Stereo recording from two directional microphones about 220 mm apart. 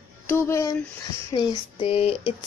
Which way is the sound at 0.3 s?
15° left (ahead or behind).